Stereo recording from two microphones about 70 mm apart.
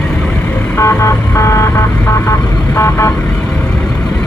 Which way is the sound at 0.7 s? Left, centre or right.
Left.